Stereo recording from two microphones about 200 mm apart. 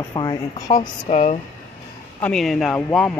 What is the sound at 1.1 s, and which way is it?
Speech, 35° left (ahead or behind).